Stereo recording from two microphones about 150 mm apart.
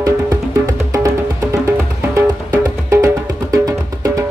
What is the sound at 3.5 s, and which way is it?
Music, 20° right (ahead or behind).